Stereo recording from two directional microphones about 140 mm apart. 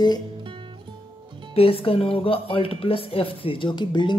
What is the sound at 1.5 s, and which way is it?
Speech, 45° left (ahead or behind).